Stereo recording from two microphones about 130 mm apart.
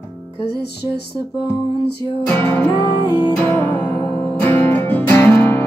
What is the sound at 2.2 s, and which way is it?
Music, 20° left (ahead or behind).